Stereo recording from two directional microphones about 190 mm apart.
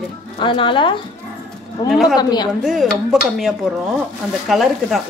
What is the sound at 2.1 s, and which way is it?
Speech, 20° left (ahead or behind).